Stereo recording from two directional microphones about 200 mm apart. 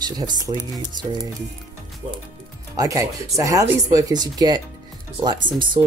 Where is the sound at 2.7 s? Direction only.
15° right (ahead or behind).